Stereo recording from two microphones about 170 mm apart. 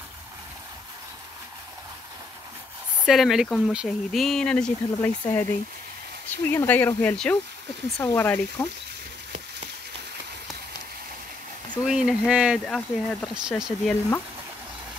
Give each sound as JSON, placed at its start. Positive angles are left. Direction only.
{"t": 3.1, "sound": "speech", "side_deg": 0}
{"t": 5.2, "sound": "speech", "side_deg": 15}
{"t": 6.5, "sound": "speech", "side_deg": 10}
{"t": 11.8, "sound": "speech", "side_deg": -5}